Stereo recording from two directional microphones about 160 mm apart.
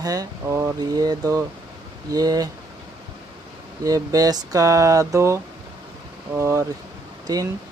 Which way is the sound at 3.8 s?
20° right (ahead or behind).